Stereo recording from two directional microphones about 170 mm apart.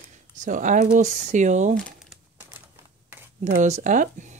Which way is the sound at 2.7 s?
15° right (ahead or behind).